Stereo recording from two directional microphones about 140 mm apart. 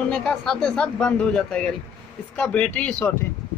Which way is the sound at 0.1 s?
5° left (ahead or behind).